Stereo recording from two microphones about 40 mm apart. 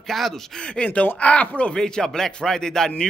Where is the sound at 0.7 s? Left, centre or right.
Left.